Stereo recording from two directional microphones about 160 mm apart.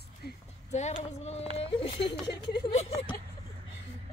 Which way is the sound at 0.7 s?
45° left (ahead or behind).